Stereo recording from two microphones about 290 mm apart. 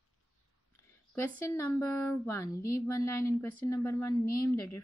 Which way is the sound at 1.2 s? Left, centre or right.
Centre.